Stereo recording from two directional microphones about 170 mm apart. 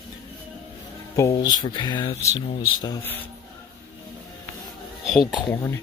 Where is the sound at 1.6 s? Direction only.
25° left (ahead or behind).